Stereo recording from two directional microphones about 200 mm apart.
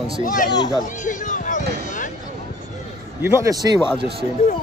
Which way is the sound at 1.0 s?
40° left (ahead or behind).